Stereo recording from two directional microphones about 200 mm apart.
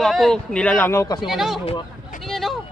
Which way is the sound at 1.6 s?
25° left (ahead or behind).